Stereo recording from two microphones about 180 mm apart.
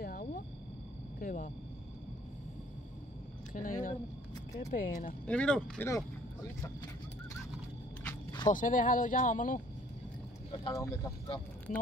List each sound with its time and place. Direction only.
0.0 s a sound: 55° left (ahead or behind)
1.2 s speech: 45° left (ahead or behind)
3.5 s speech: 50° left (ahead or behind)
5.2 s speech: 5° left (ahead or behind)
8.1 s a sound: 20° left (ahead or behind)
8.5 s speech: 45° left (ahead or behind)
10.6 s speech: 20° left (ahead or behind)
11.3 s speech: 10° left (ahead or behind)